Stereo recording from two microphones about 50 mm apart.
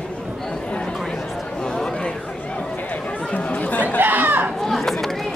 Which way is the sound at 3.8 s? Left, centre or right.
Right.